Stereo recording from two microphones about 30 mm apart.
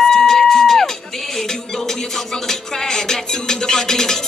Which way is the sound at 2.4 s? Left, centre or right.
Left.